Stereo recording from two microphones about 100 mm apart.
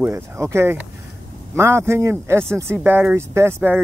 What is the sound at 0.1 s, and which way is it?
Speech, 25° right (ahead or behind).